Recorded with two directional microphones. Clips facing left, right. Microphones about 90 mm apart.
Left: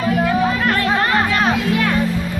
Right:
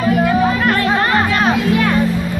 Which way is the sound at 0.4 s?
40° right (ahead or behind).